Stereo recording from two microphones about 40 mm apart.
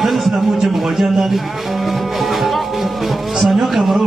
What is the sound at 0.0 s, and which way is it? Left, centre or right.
A man's voice, centre.